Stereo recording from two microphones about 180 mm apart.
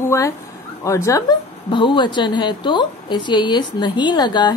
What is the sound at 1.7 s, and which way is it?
A woman's voice, 25° left (ahead or behind).